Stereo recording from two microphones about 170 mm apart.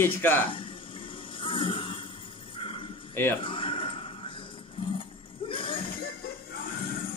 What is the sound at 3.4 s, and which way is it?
Music, 30° left (ahead or behind).